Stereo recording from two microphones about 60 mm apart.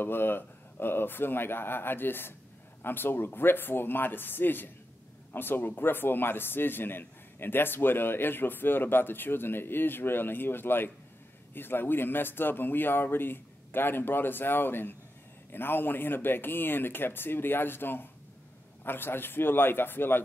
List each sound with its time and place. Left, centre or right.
0.0 s a man's voice: left